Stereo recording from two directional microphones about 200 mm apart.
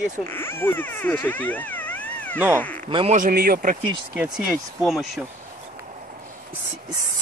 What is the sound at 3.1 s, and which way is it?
Speech, 45° right (ahead or behind).